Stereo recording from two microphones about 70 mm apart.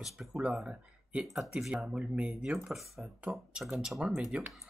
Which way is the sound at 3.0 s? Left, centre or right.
Centre.